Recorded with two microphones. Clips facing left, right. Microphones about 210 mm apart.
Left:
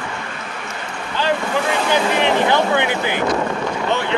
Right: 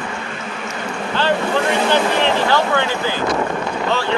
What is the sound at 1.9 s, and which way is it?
Speech, 15° left (ahead or behind).